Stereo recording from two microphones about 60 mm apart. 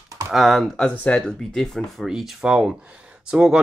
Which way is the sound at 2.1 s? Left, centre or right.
Centre.